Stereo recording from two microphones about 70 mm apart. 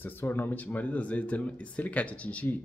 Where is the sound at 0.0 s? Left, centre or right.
Left.